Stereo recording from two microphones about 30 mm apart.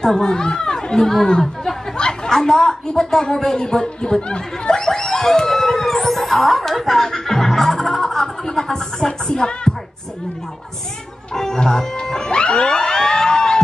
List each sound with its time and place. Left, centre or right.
0.2 s speech: left
4.8 s a sound: centre
5.5 s speech: centre; by 9.6 s left
11.3 s music: centre